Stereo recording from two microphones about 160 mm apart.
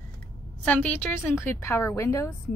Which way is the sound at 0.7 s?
10° left (ahead or behind).